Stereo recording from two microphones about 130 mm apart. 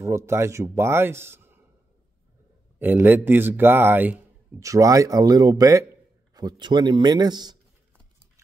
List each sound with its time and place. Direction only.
0.0 s speech: 20° right (ahead or behind)
2.8 s a man's voice: 15° right (ahead or behind); by 7.5 s 35° right (ahead or behind)